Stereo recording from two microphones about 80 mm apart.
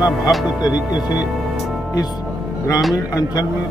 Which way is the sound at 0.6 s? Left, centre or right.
Left.